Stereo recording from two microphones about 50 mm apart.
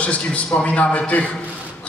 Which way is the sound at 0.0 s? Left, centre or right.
Left.